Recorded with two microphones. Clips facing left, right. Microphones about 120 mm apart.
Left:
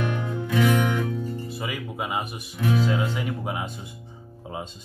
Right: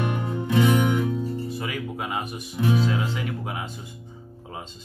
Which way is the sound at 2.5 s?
30° right (ahead or behind).